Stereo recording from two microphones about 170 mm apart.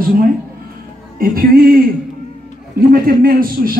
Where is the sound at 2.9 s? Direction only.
60° right (ahead or behind).